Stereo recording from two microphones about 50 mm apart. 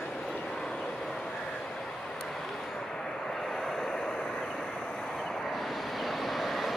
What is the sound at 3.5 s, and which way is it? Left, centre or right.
Vehicle, centre.